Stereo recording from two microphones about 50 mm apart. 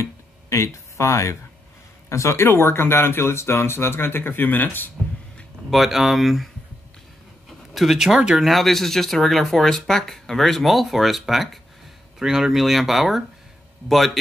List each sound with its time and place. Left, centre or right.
0.0 s a sound: left
2.0 s speech: left
5.7 s speech: centre
8.5 s speech: centre